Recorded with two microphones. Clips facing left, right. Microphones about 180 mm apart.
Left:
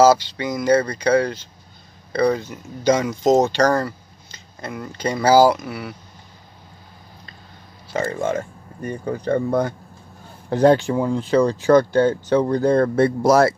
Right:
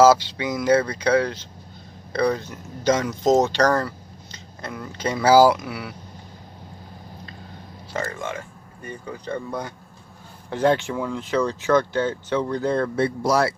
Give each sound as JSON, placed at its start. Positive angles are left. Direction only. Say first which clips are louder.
{"t": 0.0, "sound": "speech", "louder": "left 1 dB", "side_deg": -5}
{"t": 8.0, "sound": "speech", "louder": "left 8 dB", "side_deg": 35}
{"t": 10.5, "sound": "speech", "louder": "left 5 dB", "side_deg": 40}